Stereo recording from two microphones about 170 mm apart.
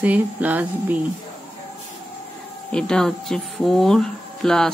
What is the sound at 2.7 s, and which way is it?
Speech, 5° left (ahead or behind).